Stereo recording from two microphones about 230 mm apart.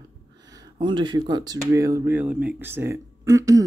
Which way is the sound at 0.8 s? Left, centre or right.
Centre.